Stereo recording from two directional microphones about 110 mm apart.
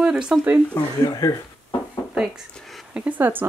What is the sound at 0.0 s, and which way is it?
Speech, 5° right (ahead or behind).